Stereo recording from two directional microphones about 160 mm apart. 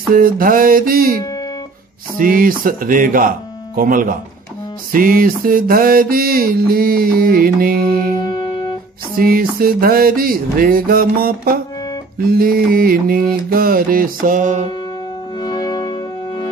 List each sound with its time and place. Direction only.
0.1 s music: 60° right (ahead or behind)
9.1 s a sound: 65° right (ahead or behind)
12.2 s music: 65° right (ahead or behind); by 14.7 s 50° right (ahead or behind)
15.3 s music: 25° left (ahead or behind)